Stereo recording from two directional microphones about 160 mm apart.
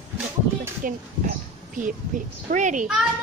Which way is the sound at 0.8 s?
60° right (ahead or behind).